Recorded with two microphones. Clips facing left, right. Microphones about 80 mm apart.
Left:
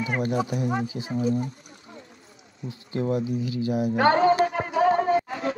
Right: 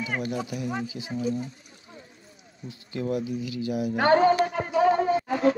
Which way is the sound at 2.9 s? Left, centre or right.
Left.